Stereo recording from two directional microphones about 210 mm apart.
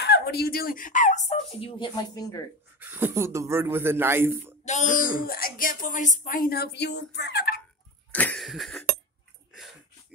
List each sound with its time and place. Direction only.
0.0 s speech: 50° left (ahead or behind); by 2.4 s 15° left (ahead or behind)
2.8 s speech: 10° right (ahead or behind)
4.6 s a woman's voice: 35° left (ahead or behind)
8.1 s a sound: 5° left (ahead or behind)